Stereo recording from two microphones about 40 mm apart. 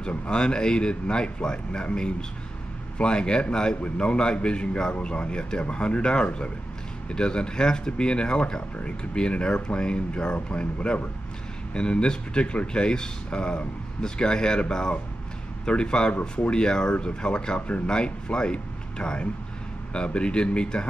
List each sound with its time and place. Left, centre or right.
0.3 s speech: left